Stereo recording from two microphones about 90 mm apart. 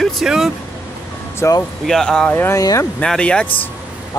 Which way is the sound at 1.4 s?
30° left (ahead or behind).